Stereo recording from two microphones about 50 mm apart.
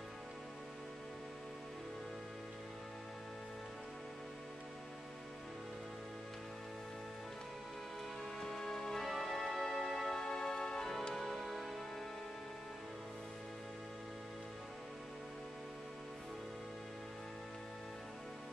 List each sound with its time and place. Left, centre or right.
8.4 s music: centre